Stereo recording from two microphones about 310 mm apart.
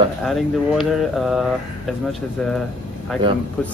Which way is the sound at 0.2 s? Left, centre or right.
Centre.